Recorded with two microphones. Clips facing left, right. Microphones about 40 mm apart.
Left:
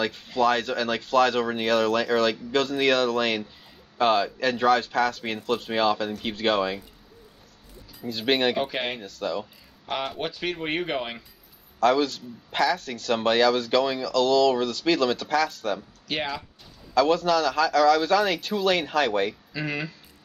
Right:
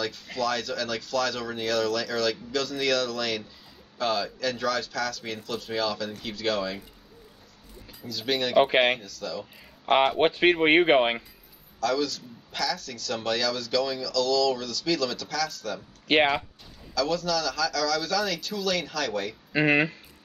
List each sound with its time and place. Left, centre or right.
0.4 s speech: left
8.1 s speech: left
8.5 s speech: right
9.0 s speech: left
10.1 s speech: right
11.8 s speech: left
16.1 s speech: right
16.9 s speech: left
19.5 s speech: right